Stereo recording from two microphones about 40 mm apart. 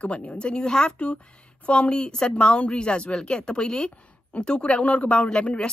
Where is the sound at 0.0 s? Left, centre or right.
Left.